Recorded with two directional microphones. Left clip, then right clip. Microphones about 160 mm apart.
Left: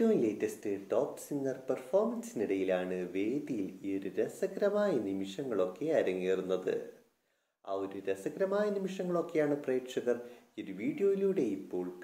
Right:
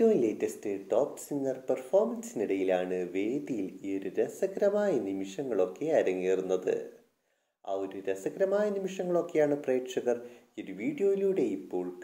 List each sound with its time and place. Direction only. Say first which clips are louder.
0.0 s speech: right 4 dB; 35° right (ahead or behind)